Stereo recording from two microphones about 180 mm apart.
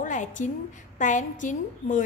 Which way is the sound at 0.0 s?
45° left (ahead or behind).